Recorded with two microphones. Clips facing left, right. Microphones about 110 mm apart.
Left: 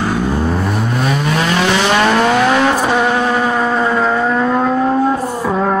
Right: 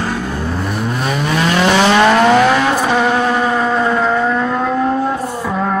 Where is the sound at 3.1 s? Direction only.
5° right (ahead or behind).